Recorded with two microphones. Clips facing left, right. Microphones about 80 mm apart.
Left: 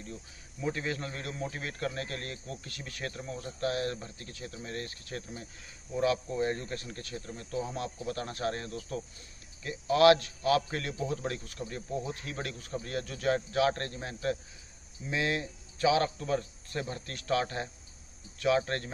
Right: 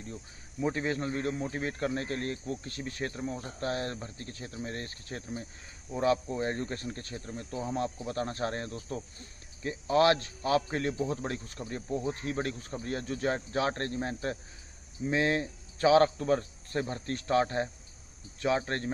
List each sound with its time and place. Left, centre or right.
0.6 s a man's voice: right